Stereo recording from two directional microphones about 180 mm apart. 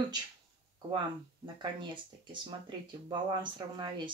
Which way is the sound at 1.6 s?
25° right (ahead or behind).